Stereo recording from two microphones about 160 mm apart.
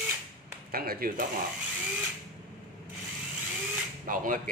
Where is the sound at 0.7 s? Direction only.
65° right (ahead or behind).